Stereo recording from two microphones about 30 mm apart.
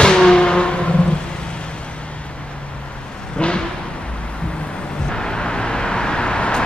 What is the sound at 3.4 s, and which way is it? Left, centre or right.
Vehicle, left.